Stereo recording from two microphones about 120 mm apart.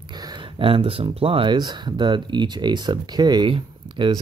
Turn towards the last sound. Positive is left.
turn(degrees=-40)  # may be behind; listen again after turning